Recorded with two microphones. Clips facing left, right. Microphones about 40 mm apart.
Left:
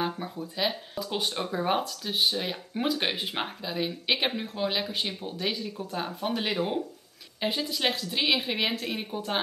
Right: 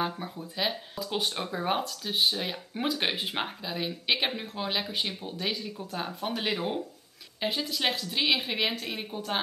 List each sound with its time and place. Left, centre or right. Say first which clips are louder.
0.0 s speech: left 1 dB; centre